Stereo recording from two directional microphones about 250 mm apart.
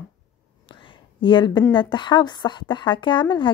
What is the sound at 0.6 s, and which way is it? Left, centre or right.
Whispering, centre.